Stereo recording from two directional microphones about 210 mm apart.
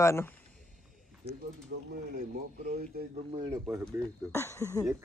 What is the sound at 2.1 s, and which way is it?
Speech, 45° right (ahead or behind).